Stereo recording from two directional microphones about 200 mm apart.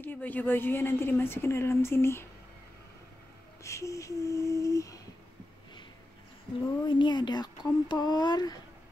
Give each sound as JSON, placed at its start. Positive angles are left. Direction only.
{"t": 0.0, "sound": "a woman's voice", "side_deg": 10}
{"t": 3.6, "sound": "a woman's voice", "side_deg": 15}
{"t": 6.9, "sound": "speech", "side_deg": 25}